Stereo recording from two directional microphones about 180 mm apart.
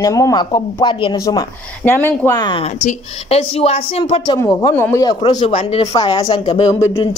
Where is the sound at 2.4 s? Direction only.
30° left (ahead or behind).